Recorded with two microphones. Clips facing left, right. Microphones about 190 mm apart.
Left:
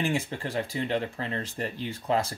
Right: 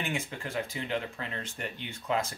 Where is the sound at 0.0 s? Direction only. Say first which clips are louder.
Left 6 dB; 35° left (ahead or behind).